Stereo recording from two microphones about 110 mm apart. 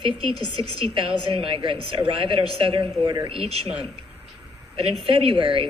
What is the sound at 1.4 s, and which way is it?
A woman's voice, 50° right (ahead or behind).